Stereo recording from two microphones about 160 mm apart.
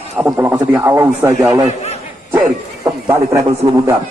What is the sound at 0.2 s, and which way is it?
A man's voice, 15° right (ahead or behind).